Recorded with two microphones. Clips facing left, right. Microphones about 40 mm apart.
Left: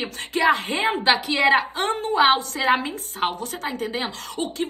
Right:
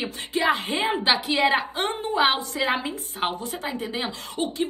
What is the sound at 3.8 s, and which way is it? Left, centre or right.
Speech, left.